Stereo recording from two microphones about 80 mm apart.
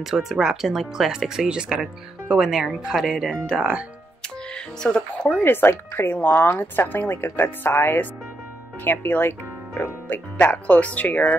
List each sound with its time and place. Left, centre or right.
0.0 s speech: centre
4.8 s speech: centre
5.4 s speech: left